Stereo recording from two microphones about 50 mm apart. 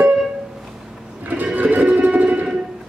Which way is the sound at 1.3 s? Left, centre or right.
Right.